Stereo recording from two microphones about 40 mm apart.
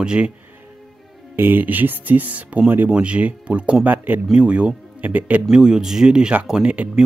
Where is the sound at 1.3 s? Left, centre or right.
Right.